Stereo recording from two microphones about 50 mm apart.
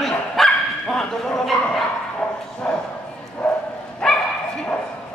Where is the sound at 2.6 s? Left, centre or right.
Centre.